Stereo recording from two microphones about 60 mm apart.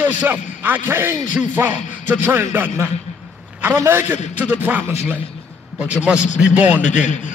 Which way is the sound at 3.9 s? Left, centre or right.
Right.